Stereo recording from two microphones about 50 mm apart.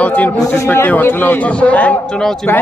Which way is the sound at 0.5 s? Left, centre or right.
Left.